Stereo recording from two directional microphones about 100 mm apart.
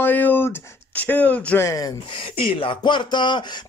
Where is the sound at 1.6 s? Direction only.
35° left (ahead or behind).